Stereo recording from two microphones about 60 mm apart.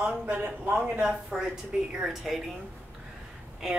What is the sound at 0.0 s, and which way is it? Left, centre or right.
Speech, centre.